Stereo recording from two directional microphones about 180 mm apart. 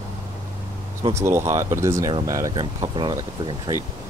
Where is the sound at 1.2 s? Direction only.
15° right (ahead or behind).